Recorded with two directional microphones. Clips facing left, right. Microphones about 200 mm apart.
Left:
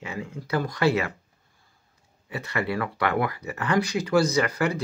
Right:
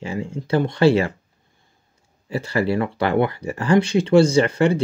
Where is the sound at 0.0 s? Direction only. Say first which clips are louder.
Right 7 dB; 30° right (ahead or behind).